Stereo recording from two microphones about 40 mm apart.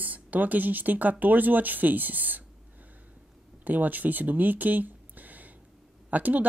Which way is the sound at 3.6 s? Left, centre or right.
Right.